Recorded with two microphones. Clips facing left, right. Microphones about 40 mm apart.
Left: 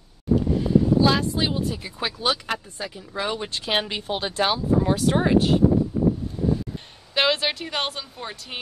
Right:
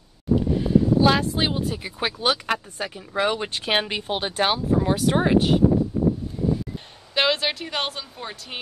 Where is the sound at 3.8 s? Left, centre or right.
Right.